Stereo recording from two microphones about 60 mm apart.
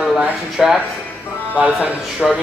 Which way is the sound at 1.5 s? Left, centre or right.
Right.